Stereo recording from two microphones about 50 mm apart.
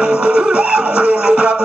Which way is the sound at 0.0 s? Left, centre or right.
Centre.